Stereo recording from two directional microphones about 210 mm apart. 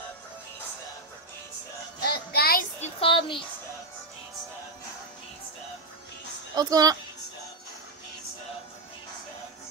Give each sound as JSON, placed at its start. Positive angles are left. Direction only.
{"t": 2.0, "sound": "child singing", "side_deg": 45}
{"t": 2.8, "sound": "child singing", "side_deg": 25}
{"t": 6.5, "sound": "speech", "side_deg": -20}